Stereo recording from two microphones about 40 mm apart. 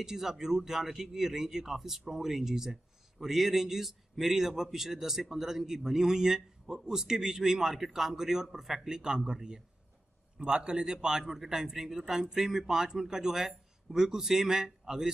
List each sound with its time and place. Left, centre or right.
0.0 s speech: centre